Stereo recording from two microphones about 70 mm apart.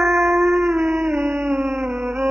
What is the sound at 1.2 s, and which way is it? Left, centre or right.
Howl, right.